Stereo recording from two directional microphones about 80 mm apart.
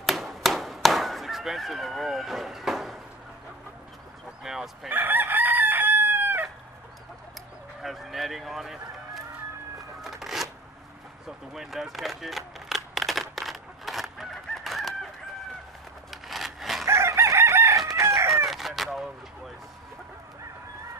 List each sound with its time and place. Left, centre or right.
0.0 s honk: centre
4.4 s speech: centre
4.8 s chicken: right
7.8 s speech: centre
10.0 s shuffling cards: centre
11.2 s camera: centre
16.1 s a sound: centre
16.8 s chicken: right
18.3 s chicken: centre